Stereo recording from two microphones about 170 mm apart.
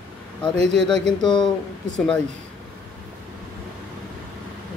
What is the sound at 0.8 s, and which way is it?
Speech, 5° left (ahead or behind).